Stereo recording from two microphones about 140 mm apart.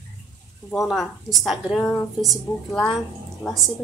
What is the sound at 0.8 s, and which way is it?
A woman's voice, centre (ahead or behind).